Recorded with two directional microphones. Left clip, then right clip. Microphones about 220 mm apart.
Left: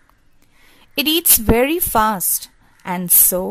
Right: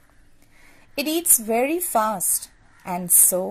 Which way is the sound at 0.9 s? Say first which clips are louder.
Left 6 dB; 30° left (ahead or behind).